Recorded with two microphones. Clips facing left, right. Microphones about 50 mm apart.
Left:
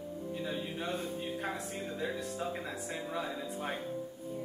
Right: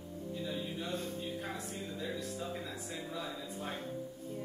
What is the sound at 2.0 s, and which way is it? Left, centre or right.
Speech, left.